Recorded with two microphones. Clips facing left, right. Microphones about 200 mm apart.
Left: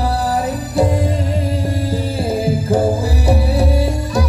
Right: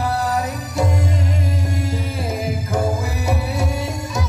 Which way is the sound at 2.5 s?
30° left (ahead or behind).